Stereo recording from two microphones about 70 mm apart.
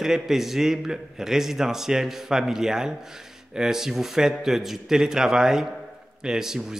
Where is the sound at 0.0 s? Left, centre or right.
Centre.